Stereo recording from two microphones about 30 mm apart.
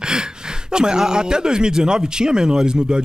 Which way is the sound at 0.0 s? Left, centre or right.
Right.